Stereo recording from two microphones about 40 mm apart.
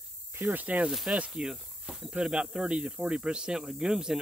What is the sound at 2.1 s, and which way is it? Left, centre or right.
Speech, right.